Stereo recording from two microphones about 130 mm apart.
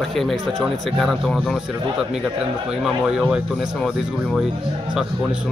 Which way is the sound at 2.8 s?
5° right (ahead or behind).